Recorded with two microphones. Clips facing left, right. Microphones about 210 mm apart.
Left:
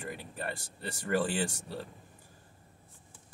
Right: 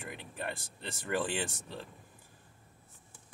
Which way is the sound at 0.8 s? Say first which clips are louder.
Left 4 dB; 45° left (ahead or behind).